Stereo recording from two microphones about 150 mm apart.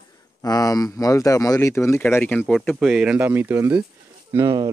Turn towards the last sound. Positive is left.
turn(degrees=-25)  # may be behind; listen again after turning